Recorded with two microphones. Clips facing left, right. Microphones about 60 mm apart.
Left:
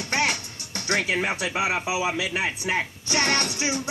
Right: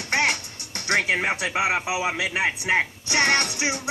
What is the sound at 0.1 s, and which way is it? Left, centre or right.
Music, right.